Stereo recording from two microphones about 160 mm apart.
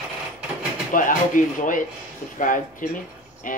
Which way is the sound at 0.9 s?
55° left (ahead or behind).